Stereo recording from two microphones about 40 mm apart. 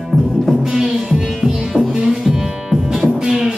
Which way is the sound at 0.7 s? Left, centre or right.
Centre.